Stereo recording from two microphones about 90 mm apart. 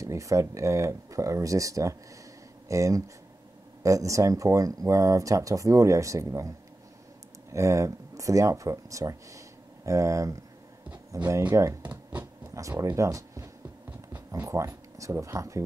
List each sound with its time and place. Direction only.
0.0 s speech: 35° right (ahead or behind)
7.5 s speech: 35° right (ahead or behind)